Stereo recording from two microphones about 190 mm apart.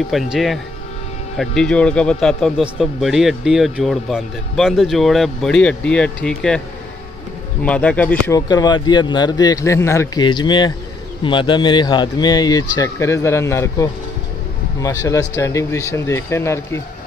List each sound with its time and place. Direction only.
0.1 s a man's voice: centre (ahead or behind)
7.6 s speech: 5° left (ahead or behind)
8.4 s speech: 20° left (ahead or behind)